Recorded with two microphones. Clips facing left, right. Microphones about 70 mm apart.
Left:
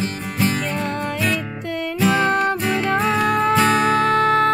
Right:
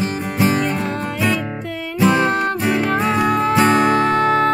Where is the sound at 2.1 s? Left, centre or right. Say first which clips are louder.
Right 1 dB; centre.